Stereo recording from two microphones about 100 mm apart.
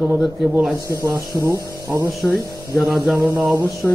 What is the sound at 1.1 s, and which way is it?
Speech, 35° right (ahead or behind).